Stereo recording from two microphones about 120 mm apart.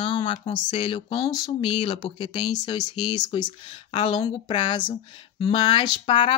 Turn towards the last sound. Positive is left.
turn(degrees=45)  # may be behind; listen again after turning